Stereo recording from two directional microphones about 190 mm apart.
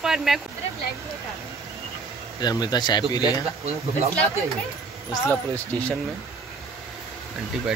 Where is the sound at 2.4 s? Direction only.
20° left (ahead or behind).